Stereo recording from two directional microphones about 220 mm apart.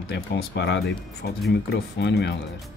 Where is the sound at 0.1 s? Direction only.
50° left (ahead or behind).